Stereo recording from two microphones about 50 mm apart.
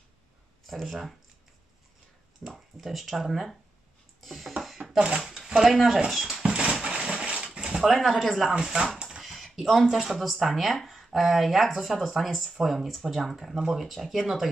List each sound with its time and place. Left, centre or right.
0.7 s speech: centre
2.4 s speech: centre
4.2 s music: centre
4.6 s a sound: centre
4.9 s speech: centre
5.6 s speech: centre
6.4 s a sound: centre
7.8 s speech: centre
8.5 s speech: centre
9.2 s speech: centre